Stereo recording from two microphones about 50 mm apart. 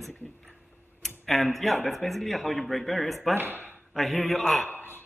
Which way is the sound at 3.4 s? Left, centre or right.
Right.